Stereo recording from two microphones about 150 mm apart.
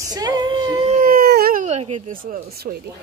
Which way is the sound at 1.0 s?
70° right (ahead or behind).